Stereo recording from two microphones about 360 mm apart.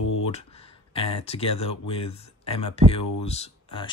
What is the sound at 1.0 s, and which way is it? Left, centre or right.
Speech, centre.